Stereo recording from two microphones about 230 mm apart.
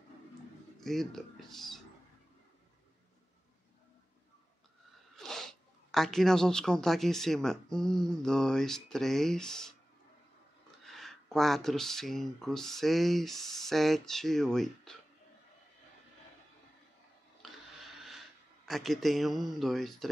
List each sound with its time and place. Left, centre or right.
0.7 s speech: centre
5.1 s speech: centre
10.8 s speech: centre
17.4 s a sound: centre
18.7 s speech: centre